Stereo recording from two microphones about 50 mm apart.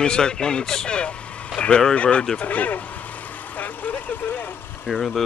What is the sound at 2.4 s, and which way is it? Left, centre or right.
Vehicle, left.